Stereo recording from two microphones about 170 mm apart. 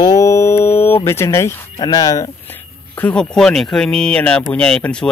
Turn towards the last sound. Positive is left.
turn(degrees=5)  # may be behind; listen again after turning